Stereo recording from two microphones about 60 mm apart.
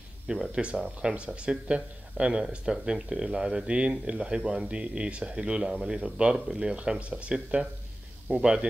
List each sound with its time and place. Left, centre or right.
0.3 s speech: centre